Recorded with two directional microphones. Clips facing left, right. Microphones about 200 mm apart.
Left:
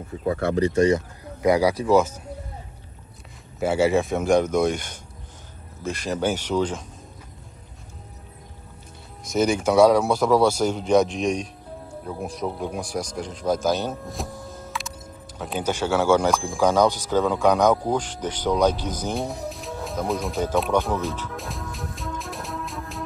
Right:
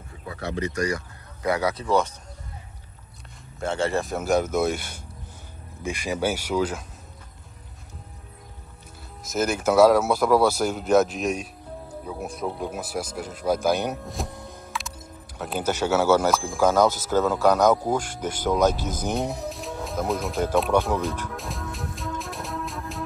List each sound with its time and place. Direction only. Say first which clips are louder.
0.2 s speech: left 9 dB; 50° left (ahead or behind)
0.6 s speech: left 7 dB; 30° left (ahead or behind); by 2.1 s 5° left (ahead or behind)
3.5 s speech: left 5 dB; 5° left (ahead or behind)
9.2 s speech: left 3 dB; 5° right (ahead or behind)
14.0 s speech: left 1 dB; centre (ahead or behind)
21.3 s music: even; centre (ahead or behind)